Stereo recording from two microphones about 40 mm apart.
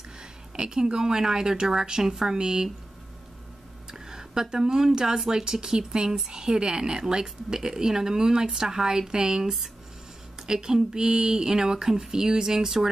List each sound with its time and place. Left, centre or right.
0.6 s speech: centre
3.9 s speech: centre